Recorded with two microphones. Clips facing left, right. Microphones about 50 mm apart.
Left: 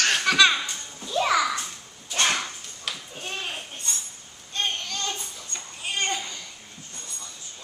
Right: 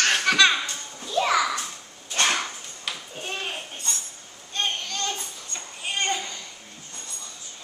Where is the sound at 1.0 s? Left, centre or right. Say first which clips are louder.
Even; centre.